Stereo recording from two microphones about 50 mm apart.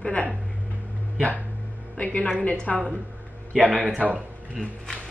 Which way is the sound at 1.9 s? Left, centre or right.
Left.